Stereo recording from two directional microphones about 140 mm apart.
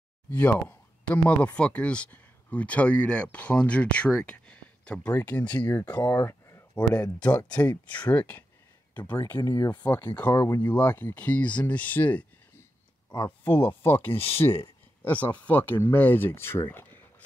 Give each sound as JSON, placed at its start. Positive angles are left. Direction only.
{"t": 0.3, "sound": "speech", "side_deg": 10}
{"t": 6.1, "sound": "a sound", "side_deg": 20}
{"t": 6.7, "sound": "speech", "side_deg": 10}
{"t": 9.3, "sound": "speech", "side_deg": 30}
{"t": 9.7, "sound": "speech", "side_deg": 15}
{"t": 10.7, "sound": "speech", "side_deg": 10}